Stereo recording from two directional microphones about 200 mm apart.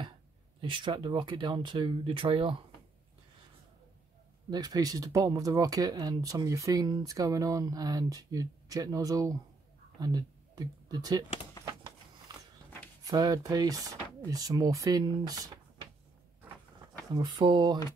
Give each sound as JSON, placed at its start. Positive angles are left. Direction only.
{"t": 0.6, "sound": "speech", "side_deg": -25}
{"t": 4.5, "sound": "speech", "side_deg": -20}
{"t": 12.3, "sound": "a sound", "side_deg": -20}
{"t": 13.0, "sound": "speech", "side_deg": -20}
{"t": 17.1, "sound": "speech", "side_deg": -25}